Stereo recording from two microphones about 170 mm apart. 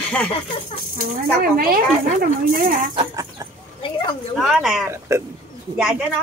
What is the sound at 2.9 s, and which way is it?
Chicken, 25° right (ahead or behind).